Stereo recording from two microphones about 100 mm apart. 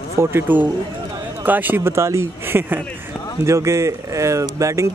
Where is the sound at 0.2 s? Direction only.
25° right (ahead or behind).